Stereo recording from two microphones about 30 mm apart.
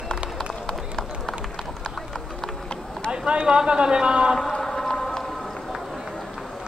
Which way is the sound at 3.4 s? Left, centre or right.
Right.